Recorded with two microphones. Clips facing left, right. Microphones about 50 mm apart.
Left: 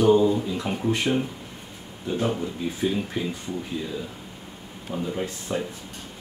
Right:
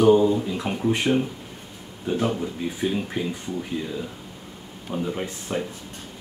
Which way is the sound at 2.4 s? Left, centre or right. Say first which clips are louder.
Even; centre.